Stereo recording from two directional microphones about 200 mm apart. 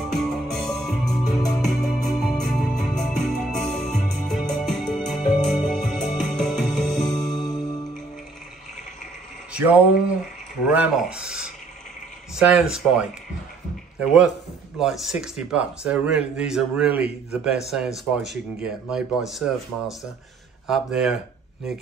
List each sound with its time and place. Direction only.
0.0 s music: centre (ahead or behind)
7.4 s music: 20° left (ahead or behind)
9.5 s a sound: 5° right (ahead or behind)
10.7 s speech: 5° right (ahead or behind)
20.6 s speech: centre (ahead or behind)